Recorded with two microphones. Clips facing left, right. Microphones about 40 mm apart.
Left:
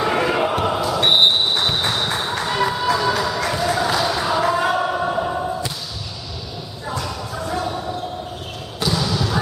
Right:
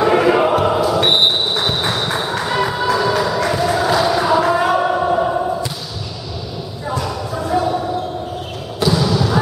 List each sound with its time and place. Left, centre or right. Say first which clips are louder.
0.0 s choir: right 6 dB; centre
1.0 s music: right 1 dB; centre
6.9 s a sound: right 5 dB; centre
8.7 s basketball bounce: right 5 dB; centre